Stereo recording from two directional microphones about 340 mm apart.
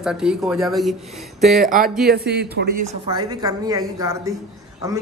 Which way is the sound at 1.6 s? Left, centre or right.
Right.